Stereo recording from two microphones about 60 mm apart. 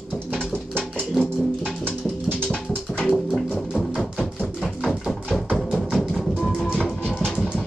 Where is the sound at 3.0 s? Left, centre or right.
Centre.